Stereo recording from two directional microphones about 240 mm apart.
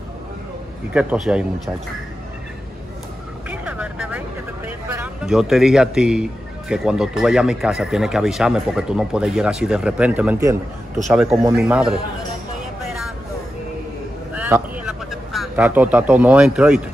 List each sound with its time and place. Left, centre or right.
0.9 s a man's voice: centre
3.4 s vehicle: centre
4.6 s a man's voice: centre
14.3 s vehicle: centre
15.3 s a man's voice: centre